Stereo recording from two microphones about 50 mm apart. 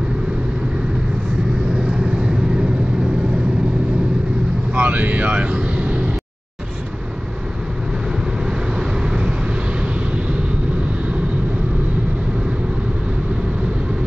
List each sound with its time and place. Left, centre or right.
4.7 s vehicle: right
8.5 s vehicle: centre